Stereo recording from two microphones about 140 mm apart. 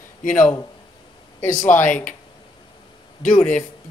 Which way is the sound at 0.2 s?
70° left (ahead or behind).